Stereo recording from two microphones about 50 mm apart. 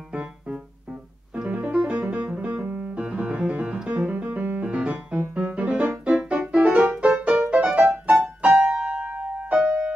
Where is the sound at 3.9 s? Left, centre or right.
Right.